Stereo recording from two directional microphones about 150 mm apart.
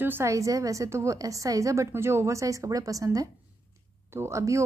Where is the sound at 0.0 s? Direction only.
15° right (ahead or behind).